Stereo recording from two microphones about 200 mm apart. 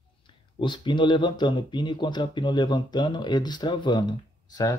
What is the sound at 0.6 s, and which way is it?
Speech, 25° left (ahead or behind).